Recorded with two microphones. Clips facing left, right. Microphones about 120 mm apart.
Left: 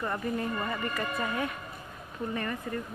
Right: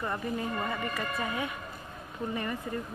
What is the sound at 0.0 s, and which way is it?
Speech, 5° right (ahead or behind).